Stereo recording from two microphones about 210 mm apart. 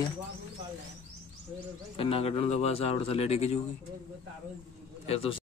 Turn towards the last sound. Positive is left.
turn(degrees=25)  # may be behind; listen again after turning